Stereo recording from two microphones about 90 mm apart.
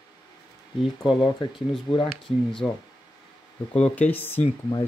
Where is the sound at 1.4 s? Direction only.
60° left (ahead or behind).